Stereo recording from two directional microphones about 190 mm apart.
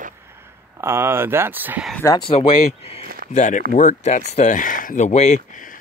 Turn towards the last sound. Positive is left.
turn(degrees=35)  # may be behind; listen again after turning